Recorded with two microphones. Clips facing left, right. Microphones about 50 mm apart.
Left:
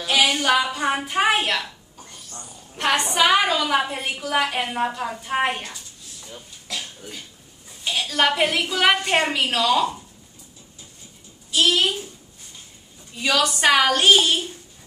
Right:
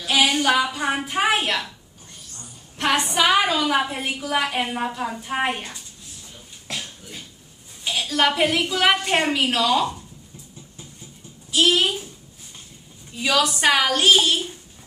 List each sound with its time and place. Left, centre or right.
0.0 s a woman's voice: centre
2.8 s a woman's voice: centre
6.7 s cough: right
7.8 s a woman's voice: centre
11.6 s a child's voice: centre
13.1 s a woman's voice: centre